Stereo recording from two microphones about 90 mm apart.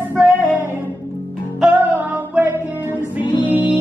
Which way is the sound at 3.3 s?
20° right (ahead or behind).